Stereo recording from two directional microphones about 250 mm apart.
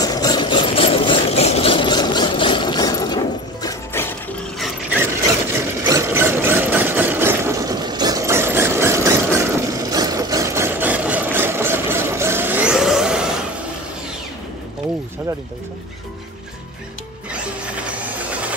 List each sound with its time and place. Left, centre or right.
0.0 s engine: centre
5.9 s engine: centre
17.3 s printer: centre